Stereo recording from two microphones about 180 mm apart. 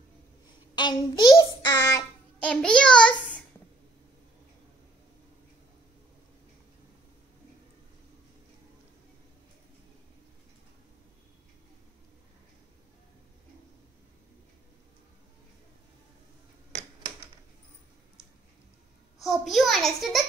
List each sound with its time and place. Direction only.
0.7 s child singing: 25° left (ahead or behind)
2.4 s a child's voice: 5° left (ahead or behind)
19.2 s a sound: centre (ahead or behind)